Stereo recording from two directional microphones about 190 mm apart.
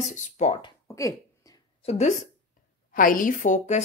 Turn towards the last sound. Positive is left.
turn(degrees=40)  # may be behind; listen again after turning